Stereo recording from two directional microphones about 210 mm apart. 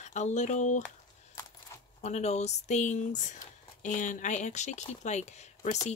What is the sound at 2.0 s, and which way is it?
Speech, 35° left (ahead or behind).